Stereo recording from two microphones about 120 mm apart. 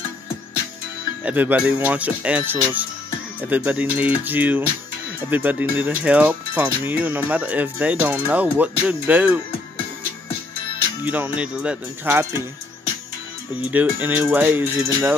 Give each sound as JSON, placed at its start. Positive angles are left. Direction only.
{"t": 1.2, "sound": "speech", "side_deg": -15}
{"t": 11.1, "sound": "speech", "side_deg": -15}
{"t": 13.6, "sound": "speech", "side_deg": -15}